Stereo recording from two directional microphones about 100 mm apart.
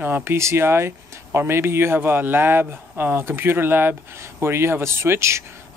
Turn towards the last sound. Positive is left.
turn(degrees=-30)  # may be behind; listen again after turning